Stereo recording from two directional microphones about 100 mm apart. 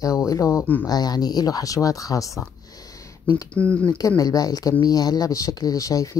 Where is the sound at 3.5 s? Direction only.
15° left (ahead or behind).